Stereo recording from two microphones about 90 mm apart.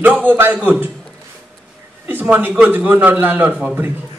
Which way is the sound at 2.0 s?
20° right (ahead or behind).